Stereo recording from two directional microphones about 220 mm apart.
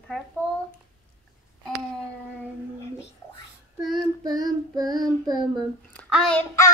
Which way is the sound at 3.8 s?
Centre (ahead or behind).